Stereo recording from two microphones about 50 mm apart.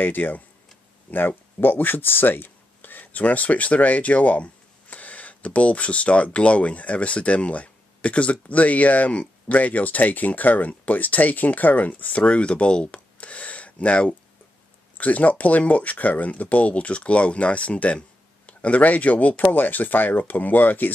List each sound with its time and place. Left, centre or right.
0.0 s speech: left